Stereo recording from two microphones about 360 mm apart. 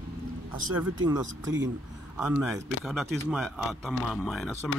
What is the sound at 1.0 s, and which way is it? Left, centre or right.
Speech, centre.